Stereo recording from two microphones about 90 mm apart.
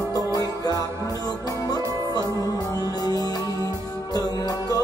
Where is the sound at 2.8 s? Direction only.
45° left (ahead or behind).